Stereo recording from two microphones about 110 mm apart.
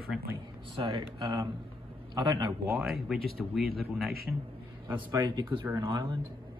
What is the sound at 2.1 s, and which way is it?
Speech, 30° right (ahead or behind).